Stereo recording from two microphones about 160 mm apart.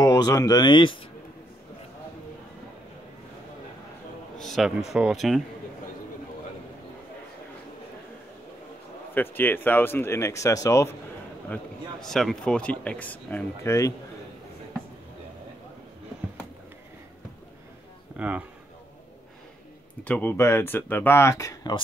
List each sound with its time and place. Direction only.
0.0 s speech: 25° left (ahead or behind)
4.6 s speech: centre (ahead or behind)
9.1 s speech: 10° left (ahead or behind)
11.5 s speech: 5° left (ahead or behind)
18.1 s speech: 10° right (ahead or behind)
20.1 s speech: 10° left (ahead or behind)